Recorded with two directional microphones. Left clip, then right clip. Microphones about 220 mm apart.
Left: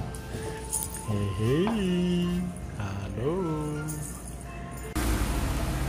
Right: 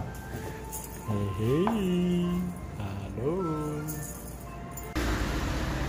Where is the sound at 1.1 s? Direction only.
Centre (ahead or behind).